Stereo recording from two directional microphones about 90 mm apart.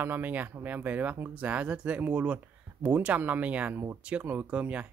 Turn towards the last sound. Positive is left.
turn(degrees=-15)  # may be behind; listen again after turning